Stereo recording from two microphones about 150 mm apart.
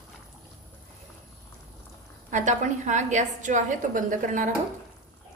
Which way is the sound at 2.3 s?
55° right (ahead or behind).